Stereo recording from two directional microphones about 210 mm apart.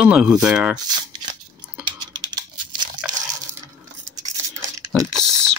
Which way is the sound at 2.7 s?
20° right (ahead or behind).